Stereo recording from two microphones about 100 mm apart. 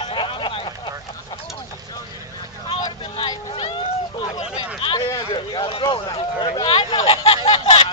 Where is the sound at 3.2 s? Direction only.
55° left (ahead or behind).